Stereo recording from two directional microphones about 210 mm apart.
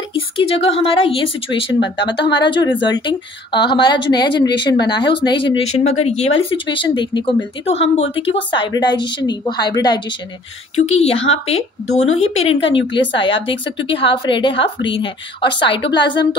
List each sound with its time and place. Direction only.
0.1 s a woman's voice: 25° left (ahead or behind)